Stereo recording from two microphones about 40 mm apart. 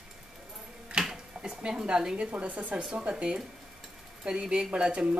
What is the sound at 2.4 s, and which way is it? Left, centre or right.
Speech, right.